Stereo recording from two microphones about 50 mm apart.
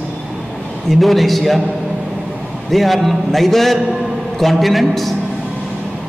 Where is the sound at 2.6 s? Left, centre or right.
Centre.